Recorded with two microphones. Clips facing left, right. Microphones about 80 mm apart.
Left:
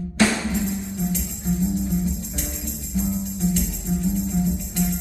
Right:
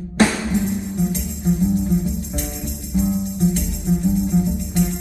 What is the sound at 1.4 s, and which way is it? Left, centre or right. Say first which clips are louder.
Music: right 5 dB; right.